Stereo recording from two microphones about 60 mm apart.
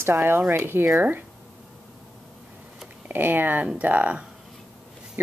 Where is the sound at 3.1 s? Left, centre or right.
Right.